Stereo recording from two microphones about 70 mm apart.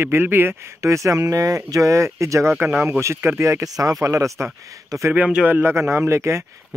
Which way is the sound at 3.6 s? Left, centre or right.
Right.